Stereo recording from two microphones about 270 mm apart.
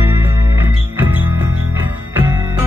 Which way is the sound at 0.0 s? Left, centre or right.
Centre.